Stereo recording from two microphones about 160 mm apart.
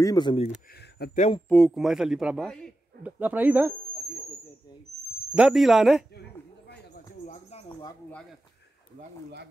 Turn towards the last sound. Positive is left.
turn(degrees=40)  # may be behind; listen again after turning